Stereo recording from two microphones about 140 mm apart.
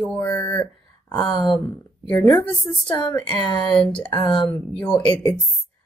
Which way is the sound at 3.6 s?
5° left (ahead or behind).